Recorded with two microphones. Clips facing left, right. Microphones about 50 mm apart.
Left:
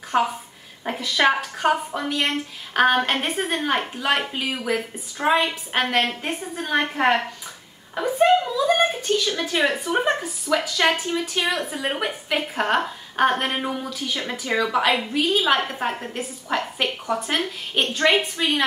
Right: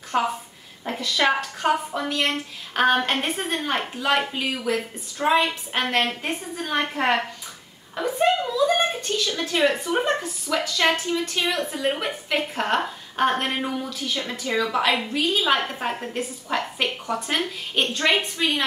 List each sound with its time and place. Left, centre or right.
0.1 s a woman's voice: centre
4.3 s a woman's voice: centre
8.1 s a sound: centre
9.3 s a woman's voice: centre
10.1 s a woman's voice: centre